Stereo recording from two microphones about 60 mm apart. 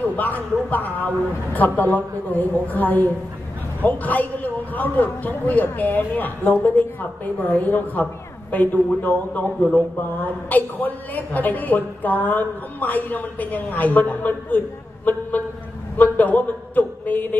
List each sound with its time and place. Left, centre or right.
0.0 s a woman's voice: left